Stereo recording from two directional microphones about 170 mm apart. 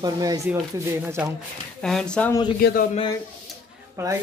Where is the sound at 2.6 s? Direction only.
65° left (ahead or behind).